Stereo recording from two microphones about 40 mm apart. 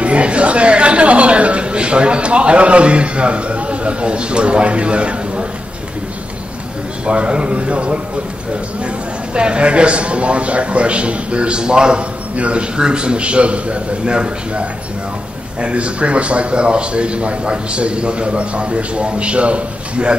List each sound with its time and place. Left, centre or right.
0.0 s speech: right
7.1 s a man's voice: right
9.3 s a man's voice: right
12.4 s a man's voice: right